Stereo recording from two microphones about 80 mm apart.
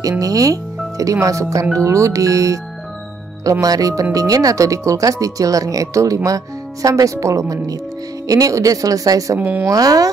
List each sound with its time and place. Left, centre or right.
0.2 s speech: right
3.6 s speech: right
9.4 s speech: centre
9.7 s speech: right